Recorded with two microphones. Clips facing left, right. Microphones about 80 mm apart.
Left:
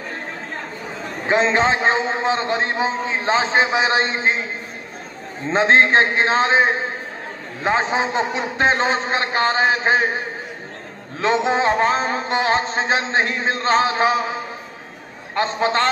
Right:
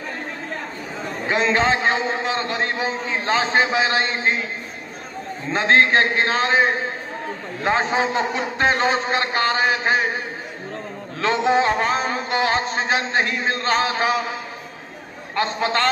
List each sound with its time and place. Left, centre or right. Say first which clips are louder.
1.3 s a man's voice: left 2 dB; left
5.5 s a man's voice: left 2 dB; left
11.1 s a man's voice: even; left
15.3 s a man's voice: left 2 dB; left